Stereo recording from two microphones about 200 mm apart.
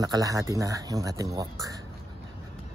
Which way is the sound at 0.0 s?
20° right (ahead or behind).